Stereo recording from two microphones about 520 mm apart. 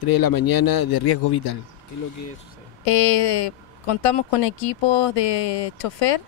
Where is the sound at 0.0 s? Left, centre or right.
Left.